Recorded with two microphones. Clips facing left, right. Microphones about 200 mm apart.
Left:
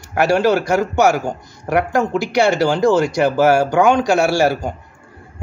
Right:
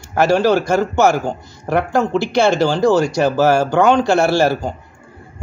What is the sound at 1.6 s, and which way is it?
A man's voice, 15° left (ahead or behind).